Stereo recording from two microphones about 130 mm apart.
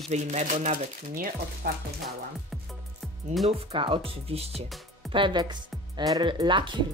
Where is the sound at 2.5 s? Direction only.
Centre (ahead or behind).